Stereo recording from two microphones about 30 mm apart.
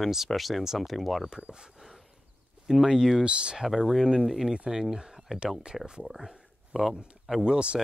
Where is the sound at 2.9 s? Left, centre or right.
Centre.